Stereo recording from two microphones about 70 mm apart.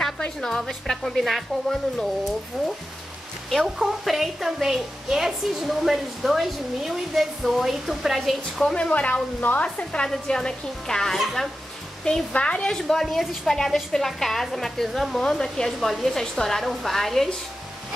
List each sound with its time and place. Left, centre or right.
0.0 s a woman's voice: centre
3.4 s a woman's voice: centre
8.7 s speech: centre
10.0 s a woman's voice: centre